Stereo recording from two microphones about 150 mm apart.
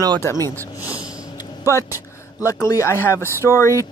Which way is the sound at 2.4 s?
20° left (ahead or behind).